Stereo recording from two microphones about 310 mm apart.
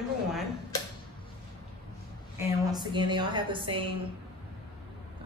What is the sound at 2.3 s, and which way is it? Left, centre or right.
A woman's voice, centre.